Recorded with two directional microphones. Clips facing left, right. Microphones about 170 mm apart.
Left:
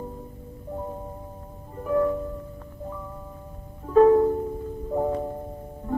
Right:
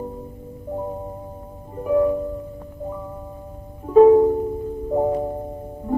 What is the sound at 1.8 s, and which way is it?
Music, 15° right (ahead or behind).